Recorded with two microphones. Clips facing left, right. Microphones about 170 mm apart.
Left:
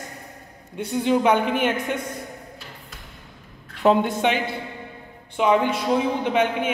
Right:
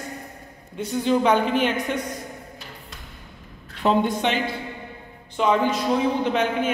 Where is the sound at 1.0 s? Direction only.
15° left (ahead or behind).